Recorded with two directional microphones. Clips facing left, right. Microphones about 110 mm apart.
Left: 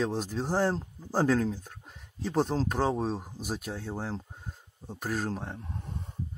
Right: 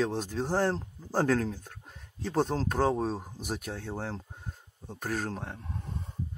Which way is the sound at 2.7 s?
10° left (ahead or behind).